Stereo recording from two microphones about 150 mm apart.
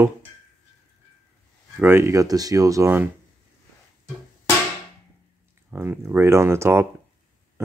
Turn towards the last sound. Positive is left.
turn(degrees=-15)  # may be behind; listen again after turning